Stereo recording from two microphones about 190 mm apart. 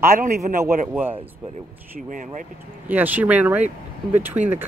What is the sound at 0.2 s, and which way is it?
Speech, 45° right (ahead or behind).